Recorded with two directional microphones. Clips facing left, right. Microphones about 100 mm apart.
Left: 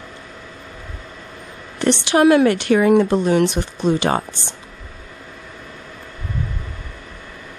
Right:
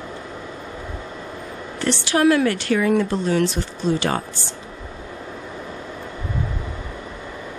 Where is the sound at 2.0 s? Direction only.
20° left (ahead or behind).